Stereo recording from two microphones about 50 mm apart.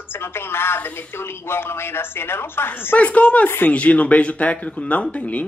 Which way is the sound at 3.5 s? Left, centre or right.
Left.